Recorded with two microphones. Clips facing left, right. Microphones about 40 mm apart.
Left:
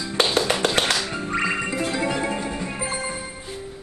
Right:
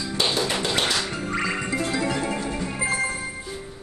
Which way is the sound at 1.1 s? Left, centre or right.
Centre.